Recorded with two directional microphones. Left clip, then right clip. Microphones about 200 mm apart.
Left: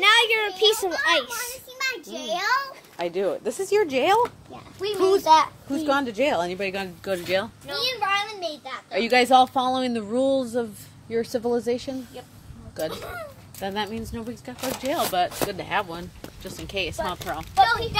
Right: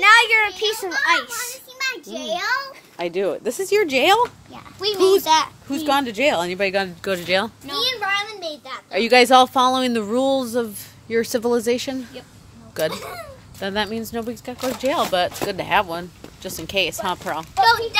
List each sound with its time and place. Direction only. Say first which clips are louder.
0.0 s a sound: right 5 dB; 10° right (ahead or behind)
0.6 s a sound: left 3 dB; centre (ahead or behind)
0.9 s a child's voice: right 3 dB; 15° right (ahead or behind); by 2.6 s centre (ahead or behind)
3.0 s speech: right 3 dB; 35° right (ahead or behind)
4.8 s a child's voice: right 5 dB; 10° right (ahead or behind)
5.1 s speech: right 1 dB; 25° right (ahead or behind)
8.6 s speech: right 6 dB; 30° right (ahead or behind)
13.6 s speech: right 5 dB; 25° right (ahead or behind)